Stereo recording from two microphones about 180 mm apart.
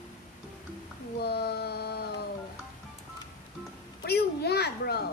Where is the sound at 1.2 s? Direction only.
60° left (ahead or behind).